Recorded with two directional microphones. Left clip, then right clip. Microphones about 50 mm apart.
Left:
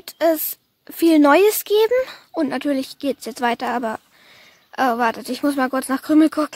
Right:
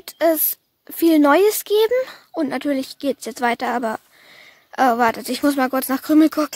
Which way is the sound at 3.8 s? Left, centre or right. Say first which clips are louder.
Right 1 dB; right.